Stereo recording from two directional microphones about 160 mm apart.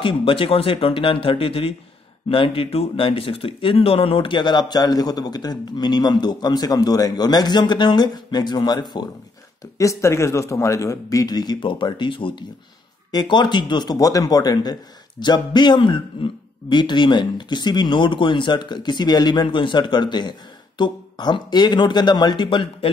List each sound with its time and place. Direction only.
0.0 s a man's voice: 35° left (ahead or behind)